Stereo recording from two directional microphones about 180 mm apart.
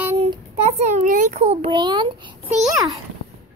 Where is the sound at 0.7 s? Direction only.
40° right (ahead or behind); by 2.1 s 25° right (ahead or behind).